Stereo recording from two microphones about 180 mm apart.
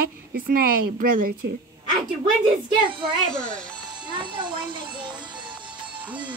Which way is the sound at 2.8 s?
25° right (ahead or behind).